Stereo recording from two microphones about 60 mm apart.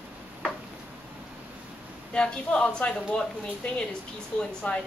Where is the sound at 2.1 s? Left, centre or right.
Centre.